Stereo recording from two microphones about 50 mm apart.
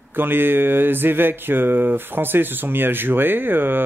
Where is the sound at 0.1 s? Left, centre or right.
Right.